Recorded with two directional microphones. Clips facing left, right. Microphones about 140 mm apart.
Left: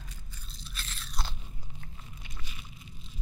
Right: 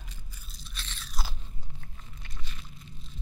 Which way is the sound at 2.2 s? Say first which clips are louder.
Even; 10° left (ahead or behind).